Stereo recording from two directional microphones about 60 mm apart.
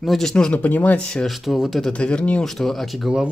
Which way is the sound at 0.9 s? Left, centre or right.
Centre.